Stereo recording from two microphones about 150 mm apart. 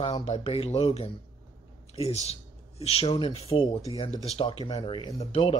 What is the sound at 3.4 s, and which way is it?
Speech, 40° left (ahead or behind).